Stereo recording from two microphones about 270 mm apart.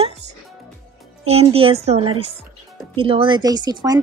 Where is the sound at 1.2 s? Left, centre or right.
Right.